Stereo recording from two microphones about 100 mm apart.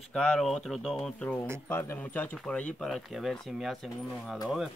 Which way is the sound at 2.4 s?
5° left (ahead or behind).